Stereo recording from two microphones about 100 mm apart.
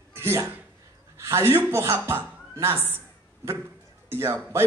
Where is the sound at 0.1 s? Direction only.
25° right (ahead or behind).